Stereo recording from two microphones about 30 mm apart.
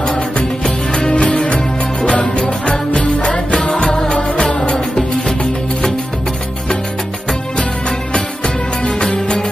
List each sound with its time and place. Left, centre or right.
1.1 s music: left; by 4.2 s centre
4.4 s music: left
9.0 s music: left